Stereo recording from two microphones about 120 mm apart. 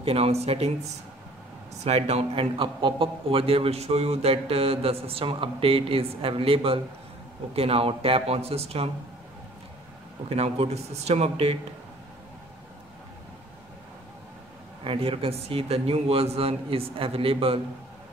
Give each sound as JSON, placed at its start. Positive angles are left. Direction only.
{"t": 0.0, "sound": "a man's voice", "side_deg": -60}
{"t": 1.8, "sound": "a man's voice", "side_deg": -60}
{"t": 10.3, "sound": "a man's voice", "side_deg": -60}
{"t": 14.8, "sound": "a man's voice", "side_deg": -50}